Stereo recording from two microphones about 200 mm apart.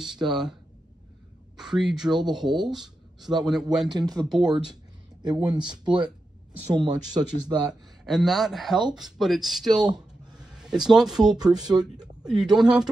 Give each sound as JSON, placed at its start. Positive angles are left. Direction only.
{"t": 0.0, "sound": "speech", "side_deg": 0}
{"t": 1.6, "sound": "speech", "side_deg": -5}
{"t": 3.9, "sound": "speech", "side_deg": -20}
{"t": 4.3, "sound": "speech", "side_deg": 0}
{"t": 5.2, "sound": "speech", "side_deg": -20}
{"t": 8.0, "sound": "speech", "side_deg": 0}
{"t": 9.9, "sound": "a sound", "side_deg": -5}
{"t": 12.3, "sound": "speech", "side_deg": 0}